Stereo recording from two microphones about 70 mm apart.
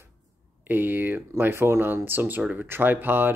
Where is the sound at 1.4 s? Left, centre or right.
Right.